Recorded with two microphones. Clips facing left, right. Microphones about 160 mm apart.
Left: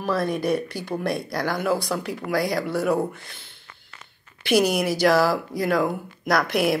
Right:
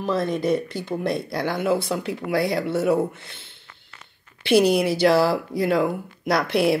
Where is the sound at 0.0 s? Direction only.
20° right (ahead or behind).